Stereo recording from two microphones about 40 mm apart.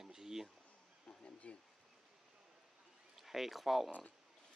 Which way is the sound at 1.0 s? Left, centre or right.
Left.